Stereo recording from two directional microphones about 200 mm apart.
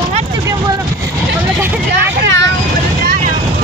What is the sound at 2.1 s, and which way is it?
Vehicle, 65° right (ahead or behind).